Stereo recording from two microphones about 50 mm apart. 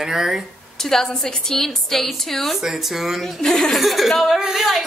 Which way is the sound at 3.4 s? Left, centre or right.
Centre.